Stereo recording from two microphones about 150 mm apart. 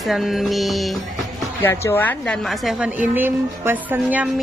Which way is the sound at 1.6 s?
15° left (ahead or behind).